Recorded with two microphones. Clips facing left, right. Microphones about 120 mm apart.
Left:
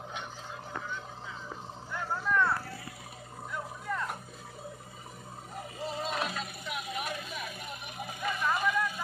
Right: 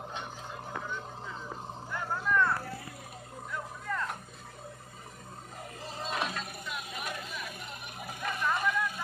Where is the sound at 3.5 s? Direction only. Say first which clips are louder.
Left 1 dB; 15° left (ahead or behind).